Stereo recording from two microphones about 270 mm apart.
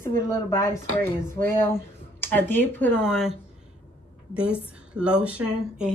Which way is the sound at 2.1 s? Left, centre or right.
Centre.